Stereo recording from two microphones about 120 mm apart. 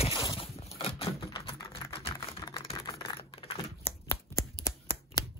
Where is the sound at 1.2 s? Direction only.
35° left (ahead or behind).